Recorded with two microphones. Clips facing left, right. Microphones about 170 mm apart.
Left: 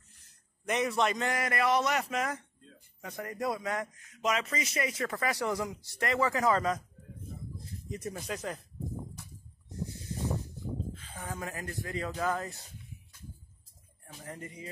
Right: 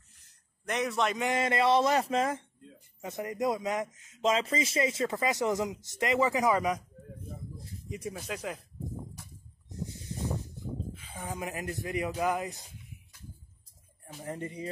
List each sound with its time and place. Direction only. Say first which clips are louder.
0.2 s a sound: left 1 dB; centre (ahead or behind)
1.2 s speech: right 3 dB; 25° right (ahead or behind)
7.9 s speech: even; 5° right (ahead or behind)
10.9 s speech: right 1 dB; 10° right (ahead or behind)
14.3 s speech: right 7 dB; 30° right (ahead or behind)